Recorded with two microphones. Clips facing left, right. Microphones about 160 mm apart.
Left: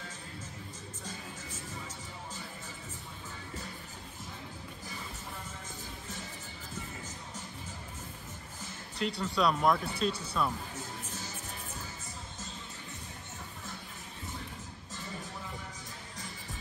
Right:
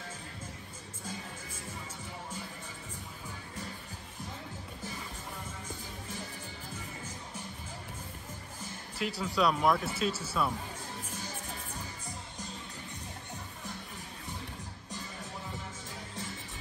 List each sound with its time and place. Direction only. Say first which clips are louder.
8.9 s speech: even; 5° right (ahead or behind)